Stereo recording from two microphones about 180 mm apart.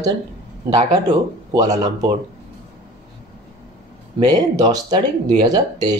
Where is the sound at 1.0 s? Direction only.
25° right (ahead or behind).